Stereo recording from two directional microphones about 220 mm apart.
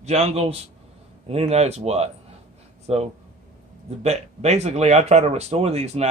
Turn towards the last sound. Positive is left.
turn(degrees=-30)  # may be behind; listen again after turning